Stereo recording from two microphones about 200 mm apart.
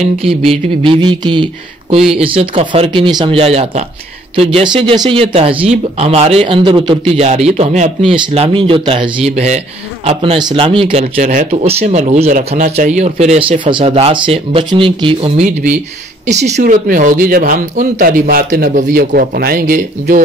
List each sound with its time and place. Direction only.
0.5 s speech: 25° right (ahead or behind)
16.5 s speech: 45° right (ahead or behind)